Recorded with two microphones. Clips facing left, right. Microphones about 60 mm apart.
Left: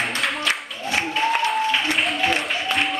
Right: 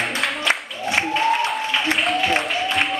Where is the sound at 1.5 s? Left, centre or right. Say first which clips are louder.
Even; centre.